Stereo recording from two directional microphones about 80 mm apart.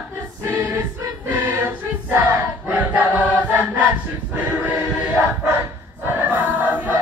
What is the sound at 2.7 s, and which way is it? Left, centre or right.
Choir, centre.